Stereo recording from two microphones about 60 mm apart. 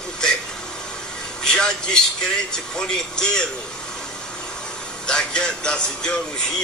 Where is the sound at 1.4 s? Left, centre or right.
Centre.